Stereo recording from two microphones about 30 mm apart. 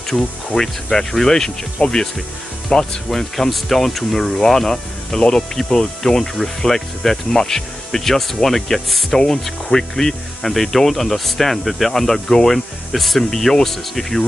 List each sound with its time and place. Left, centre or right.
0.1 s speech: left
0.6 s speech: centre
3.1 s speech: centre
9.4 s speech: centre
11.9 s speech: centre
12.5 s speech: centre